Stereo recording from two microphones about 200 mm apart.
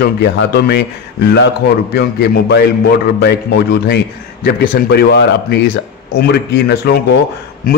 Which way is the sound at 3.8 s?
55° left (ahead or behind).